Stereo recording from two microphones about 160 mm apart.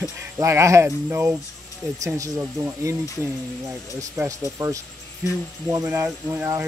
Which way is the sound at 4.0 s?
20° right (ahead or behind).